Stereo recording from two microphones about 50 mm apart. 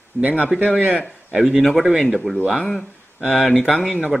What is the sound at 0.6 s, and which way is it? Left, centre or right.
Speech, right.